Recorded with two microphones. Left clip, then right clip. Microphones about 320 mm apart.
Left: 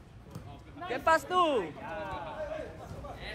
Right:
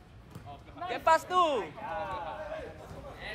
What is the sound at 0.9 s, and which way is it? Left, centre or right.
Speech, centre.